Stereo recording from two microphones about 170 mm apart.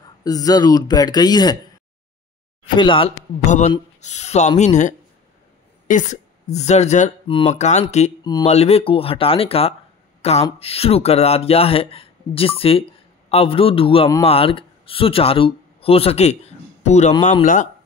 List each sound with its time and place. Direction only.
0.0 s speech: 20° left (ahead or behind)
2.7 s speech: 30° left (ahead or behind)
3.4 s speech: 45° left (ahead or behind)
8.2 s mantra: 25° left (ahead or behind)
8.5 s speech: 35° left (ahead or behind)